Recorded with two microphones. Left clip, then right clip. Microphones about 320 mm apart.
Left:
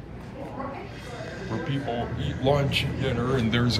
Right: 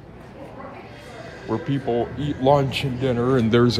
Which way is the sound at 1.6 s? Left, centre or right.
Right.